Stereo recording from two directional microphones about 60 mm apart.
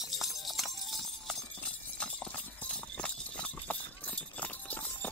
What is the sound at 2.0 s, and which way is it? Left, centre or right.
Clip-clop, centre.